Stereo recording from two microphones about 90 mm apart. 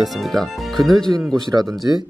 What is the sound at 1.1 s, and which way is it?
Speech, 45° right (ahead or behind).